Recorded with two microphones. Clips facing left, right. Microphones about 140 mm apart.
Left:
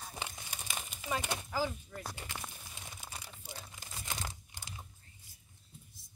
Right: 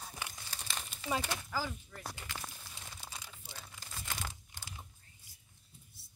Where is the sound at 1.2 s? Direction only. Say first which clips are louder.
Left 5 dB; 20° left (ahead or behind).